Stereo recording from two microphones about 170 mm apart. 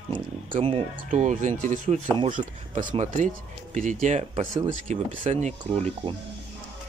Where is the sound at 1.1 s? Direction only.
45° right (ahead or behind).